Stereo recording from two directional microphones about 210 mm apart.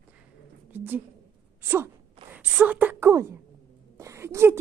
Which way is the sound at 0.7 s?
10° right (ahead or behind).